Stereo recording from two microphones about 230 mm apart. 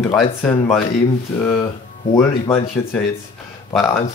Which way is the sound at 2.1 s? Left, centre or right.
Centre.